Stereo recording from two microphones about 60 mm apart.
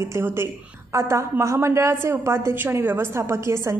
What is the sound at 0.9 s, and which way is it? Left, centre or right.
A woman's voice, right.